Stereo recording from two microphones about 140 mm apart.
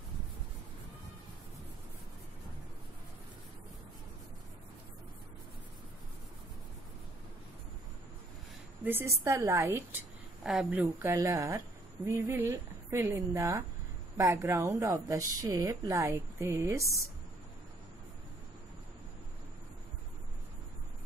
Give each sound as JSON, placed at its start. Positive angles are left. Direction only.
{"t": 8.8, "sound": "speech", "side_deg": -15}
{"t": 10.4, "sound": "a woman's voice", "side_deg": -5}